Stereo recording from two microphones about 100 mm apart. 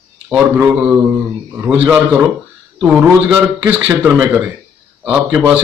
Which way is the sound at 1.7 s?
10° right (ahead or behind).